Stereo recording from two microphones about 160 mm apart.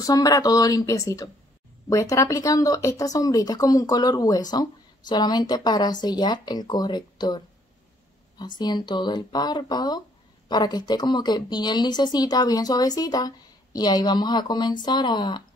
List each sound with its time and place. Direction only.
0.0 s speech: 25° left (ahead or behind)